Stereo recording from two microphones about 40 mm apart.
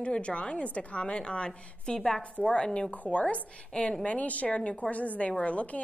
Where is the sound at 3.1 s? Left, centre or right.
Left.